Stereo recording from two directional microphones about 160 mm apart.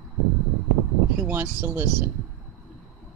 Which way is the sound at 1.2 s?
15° right (ahead or behind).